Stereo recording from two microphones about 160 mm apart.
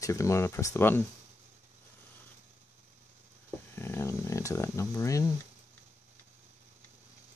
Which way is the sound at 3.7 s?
15° left (ahead or behind).